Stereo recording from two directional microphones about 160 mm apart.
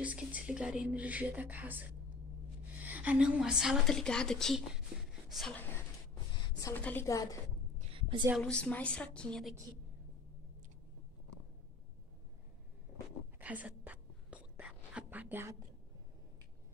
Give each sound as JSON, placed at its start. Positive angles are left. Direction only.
{"t": 0.0, "sound": "a woman's voice", "side_deg": -10}
{"t": 6.6, "sound": "a woman's voice", "side_deg": 10}
{"t": 7.9, "sound": "a sound", "side_deg": -30}
{"t": 8.4, "sound": "a woman's voice", "side_deg": 5}
{"t": 13.4, "sound": "whispering", "side_deg": -10}